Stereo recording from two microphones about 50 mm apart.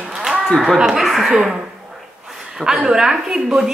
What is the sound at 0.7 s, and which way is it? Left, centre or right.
Speech, centre.